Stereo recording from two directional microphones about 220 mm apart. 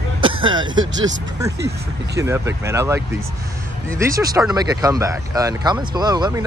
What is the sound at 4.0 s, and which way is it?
Speech, 15° right (ahead or behind).